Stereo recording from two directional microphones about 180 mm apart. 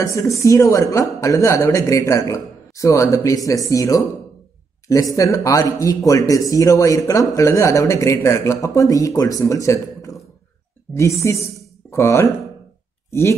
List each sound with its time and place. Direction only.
0.0 s speech: 15° left (ahead or behind)